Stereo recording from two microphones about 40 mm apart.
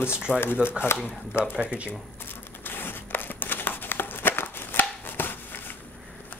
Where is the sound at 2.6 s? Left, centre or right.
Left.